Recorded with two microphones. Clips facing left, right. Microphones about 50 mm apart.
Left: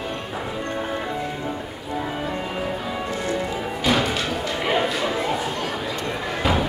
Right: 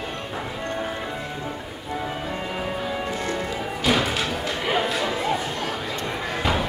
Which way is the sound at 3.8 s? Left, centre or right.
Centre.